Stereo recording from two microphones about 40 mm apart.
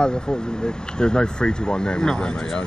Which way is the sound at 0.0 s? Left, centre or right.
Left.